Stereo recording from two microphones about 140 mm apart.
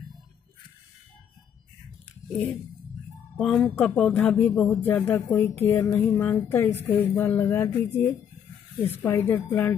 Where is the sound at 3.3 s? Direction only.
Centre (ahead or behind).